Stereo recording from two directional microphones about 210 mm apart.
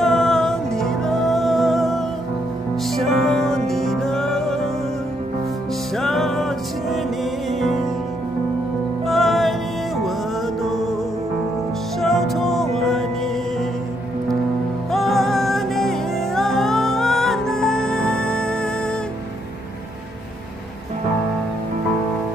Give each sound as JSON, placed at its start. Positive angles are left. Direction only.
{"t": 0.0, "sound": "music", "side_deg": 0}
{"t": 5.9, "sound": "music", "side_deg": 0}
{"t": 9.0, "sound": "music", "side_deg": 0}
{"t": 10.6, "sound": "music", "side_deg": 0}
{"t": 12.0, "sound": "music", "side_deg": 0}
{"t": 14.9, "sound": "music", "side_deg": 0}